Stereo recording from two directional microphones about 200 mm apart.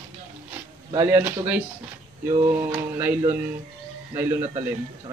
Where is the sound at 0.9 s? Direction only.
10° right (ahead or behind).